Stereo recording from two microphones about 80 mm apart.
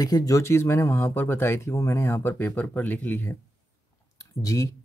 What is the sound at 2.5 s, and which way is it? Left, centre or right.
Speech, left.